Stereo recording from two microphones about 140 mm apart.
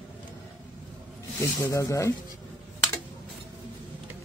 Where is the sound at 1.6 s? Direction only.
20° left (ahead or behind).